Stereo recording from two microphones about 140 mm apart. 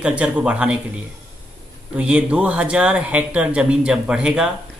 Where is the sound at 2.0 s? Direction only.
10° right (ahead or behind).